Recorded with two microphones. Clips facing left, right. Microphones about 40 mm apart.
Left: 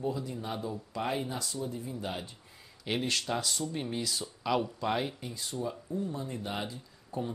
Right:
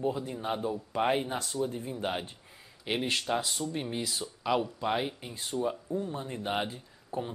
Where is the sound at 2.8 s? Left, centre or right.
Centre.